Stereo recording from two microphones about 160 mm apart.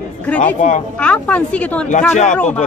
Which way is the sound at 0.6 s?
50° left (ahead or behind).